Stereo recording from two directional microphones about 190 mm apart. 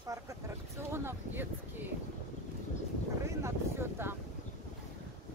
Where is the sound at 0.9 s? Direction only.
10° right (ahead or behind).